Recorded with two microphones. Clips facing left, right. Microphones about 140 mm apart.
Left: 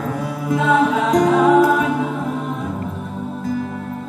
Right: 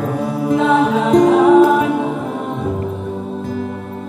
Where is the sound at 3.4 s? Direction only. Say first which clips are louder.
Left 4 dB; 25° right (ahead or behind).